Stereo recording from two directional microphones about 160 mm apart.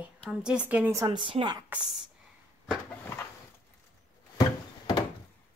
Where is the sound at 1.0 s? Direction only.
30° right (ahead or behind).